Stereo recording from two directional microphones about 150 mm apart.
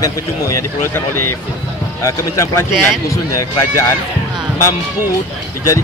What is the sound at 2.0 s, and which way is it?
Speech, 20° left (ahead or behind).